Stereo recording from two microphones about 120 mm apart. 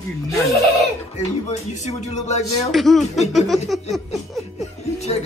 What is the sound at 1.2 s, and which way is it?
Speech, 70° left (ahead or behind).